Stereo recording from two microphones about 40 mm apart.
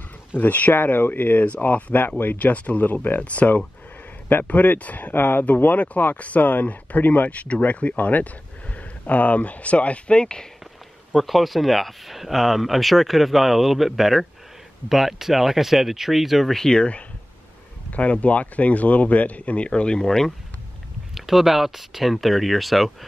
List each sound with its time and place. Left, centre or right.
0.4 s speech: left
0.7 s speech: left
1.6 s speech: left
2.3 s speech: left
2.9 s speech: left
3.2 s speech: left
5.1 s speech: left
5.6 s speech: left
11.1 s speech: centre
16.5 s speech: centre
17.9 s speech: left
20.1 s speech: centre
21.1 s speech: centre